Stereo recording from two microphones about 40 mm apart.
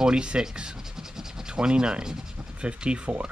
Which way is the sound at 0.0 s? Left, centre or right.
Right.